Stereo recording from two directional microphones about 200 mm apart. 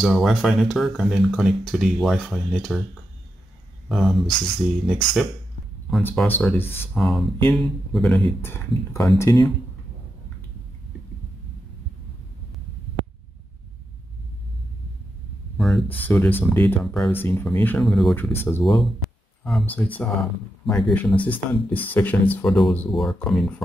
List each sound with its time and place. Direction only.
0.0 s speech: centre (ahead or behind)
3.9 s speech: centre (ahead or behind)
5.9 s speech: 5° left (ahead or behind)
6.6 s speech: 30° left (ahead or behind)
6.9 s speech: centre (ahead or behind)
8.5 s speech: 15° left (ahead or behind)
15.5 s a sound: centre (ahead or behind)
16.1 s speech: 10° left (ahead or behind)